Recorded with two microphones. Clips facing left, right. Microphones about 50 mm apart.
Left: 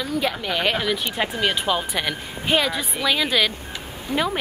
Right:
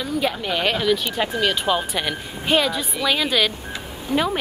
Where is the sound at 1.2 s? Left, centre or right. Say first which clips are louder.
Right 1 dB; left.